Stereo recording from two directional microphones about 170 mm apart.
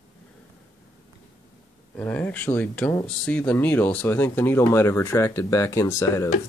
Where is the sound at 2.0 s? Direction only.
10° left (ahead or behind).